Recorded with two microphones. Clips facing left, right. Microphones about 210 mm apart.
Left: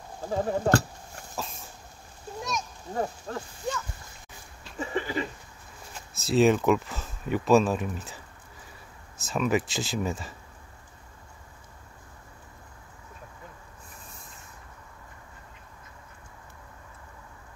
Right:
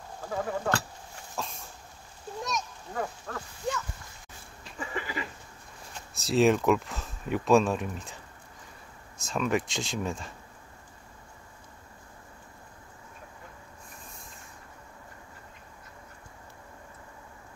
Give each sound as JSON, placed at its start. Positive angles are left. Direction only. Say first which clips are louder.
{"t": 0.2, "sound": "speech", "louder": "left 5 dB", "side_deg": 30}
{"t": 1.3, "sound": "vehicle", "louder": "even", "side_deg": 5}
{"t": 2.9, "sound": "speech", "louder": "left 4 dB", "side_deg": 25}
{"t": 4.7, "sound": "a sound", "louder": "left 6 dB", "side_deg": 30}
{"t": 5.9, "sound": "speech", "louder": "left 2 dB", "side_deg": 0}
{"t": 9.2, "sound": "speech", "louder": "left 2 dB", "side_deg": 5}